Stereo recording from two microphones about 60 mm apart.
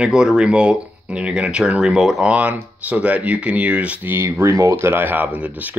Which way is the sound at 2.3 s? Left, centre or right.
Right.